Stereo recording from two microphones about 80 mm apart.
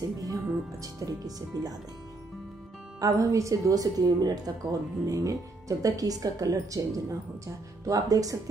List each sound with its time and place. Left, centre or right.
0.2 s speech: right
3.0 s speech: right